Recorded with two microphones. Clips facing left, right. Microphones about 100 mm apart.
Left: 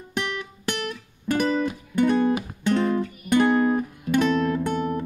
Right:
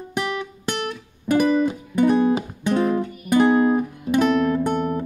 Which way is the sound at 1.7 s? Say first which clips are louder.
Right 3 dB; 25° right (ahead or behind).